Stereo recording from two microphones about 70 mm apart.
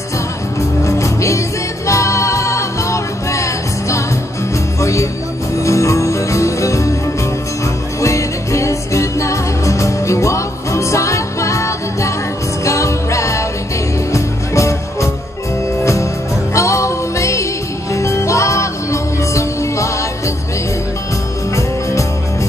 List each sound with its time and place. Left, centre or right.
0.6 s music: left
8.0 s music: left
21.5 s music: left